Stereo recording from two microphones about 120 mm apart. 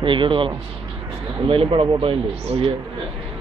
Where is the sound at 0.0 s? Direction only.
45° right (ahead or behind).